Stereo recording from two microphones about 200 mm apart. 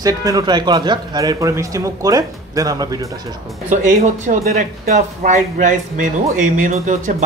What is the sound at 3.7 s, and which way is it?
A man's voice, 40° right (ahead or behind).